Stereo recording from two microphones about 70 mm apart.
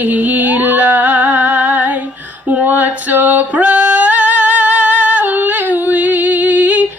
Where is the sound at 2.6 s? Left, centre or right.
Right.